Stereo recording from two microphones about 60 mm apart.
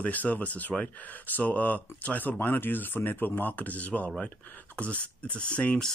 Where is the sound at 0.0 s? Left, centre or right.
Left.